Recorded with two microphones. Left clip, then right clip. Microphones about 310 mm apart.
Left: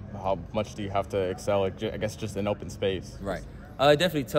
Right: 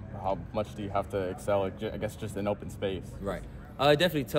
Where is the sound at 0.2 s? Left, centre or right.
Left.